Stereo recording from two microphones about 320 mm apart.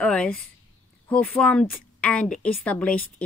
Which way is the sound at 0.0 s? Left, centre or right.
Centre.